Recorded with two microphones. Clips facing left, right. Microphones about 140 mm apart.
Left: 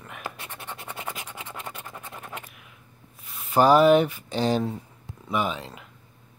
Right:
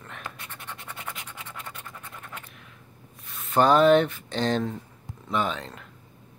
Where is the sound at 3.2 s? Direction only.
Centre (ahead or behind).